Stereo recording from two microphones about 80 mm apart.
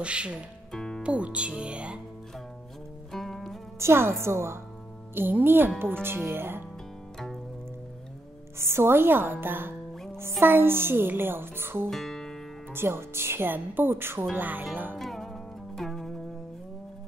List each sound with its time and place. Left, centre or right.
0.0 s speech: centre
0.7 s music: centre
1.0 s speech: centre
3.1 s music: centre
3.8 s speech: right
8.5 s speech: right
11.9 s music: centre
12.7 s speech: right
15.0 s music: centre